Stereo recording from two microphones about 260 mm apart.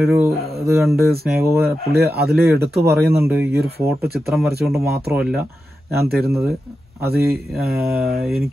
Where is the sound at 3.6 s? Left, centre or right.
Right.